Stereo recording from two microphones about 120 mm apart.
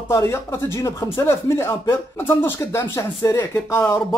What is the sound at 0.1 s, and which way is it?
Speech, 25° left (ahead or behind).